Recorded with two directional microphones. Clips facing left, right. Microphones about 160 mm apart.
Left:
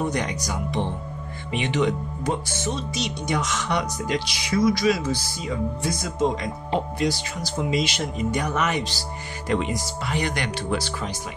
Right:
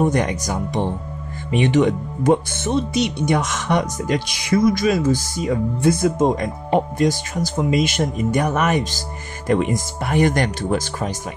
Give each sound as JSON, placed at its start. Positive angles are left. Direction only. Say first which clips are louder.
{"t": 0.0, "sound": "speech", "louder": "right 7 dB", "side_deg": -50}